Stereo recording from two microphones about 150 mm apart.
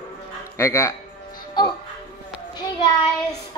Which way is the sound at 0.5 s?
20° left (ahead or behind).